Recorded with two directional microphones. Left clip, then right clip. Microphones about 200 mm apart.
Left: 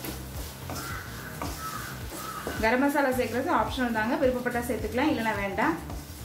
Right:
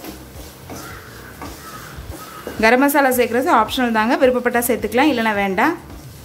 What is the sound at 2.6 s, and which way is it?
A woman's voice, 55° right (ahead or behind).